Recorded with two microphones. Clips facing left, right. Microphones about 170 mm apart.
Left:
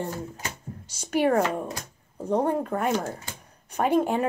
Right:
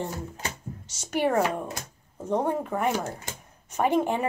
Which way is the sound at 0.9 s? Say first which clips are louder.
Left 2 dB; centre (ahead or behind).